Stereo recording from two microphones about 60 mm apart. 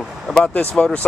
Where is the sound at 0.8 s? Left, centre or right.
Centre.